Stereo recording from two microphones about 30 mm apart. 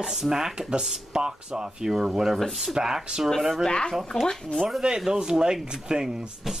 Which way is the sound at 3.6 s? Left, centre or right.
Left.